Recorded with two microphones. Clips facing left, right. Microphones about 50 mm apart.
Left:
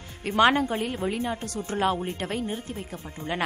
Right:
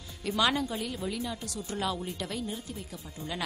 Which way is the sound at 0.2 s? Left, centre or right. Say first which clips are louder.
Left 7 dB; left.